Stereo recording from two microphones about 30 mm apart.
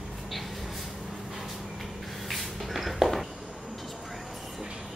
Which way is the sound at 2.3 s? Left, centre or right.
Centre.